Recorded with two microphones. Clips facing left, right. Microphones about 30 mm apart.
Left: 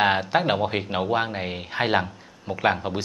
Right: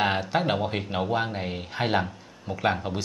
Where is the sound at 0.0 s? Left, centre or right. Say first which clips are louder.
Left 4 dB; centre.